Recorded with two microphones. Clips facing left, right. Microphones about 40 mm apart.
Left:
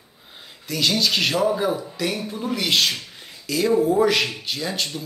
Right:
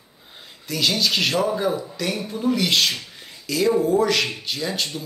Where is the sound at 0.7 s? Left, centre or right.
Centre.